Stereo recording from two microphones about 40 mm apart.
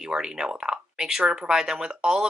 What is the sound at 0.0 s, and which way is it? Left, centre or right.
Speech, centre.